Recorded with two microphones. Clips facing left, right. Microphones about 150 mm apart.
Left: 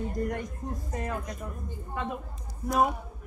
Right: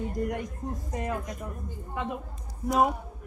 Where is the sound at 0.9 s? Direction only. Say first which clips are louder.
Right 2 dB; 15° right (ahead or behind).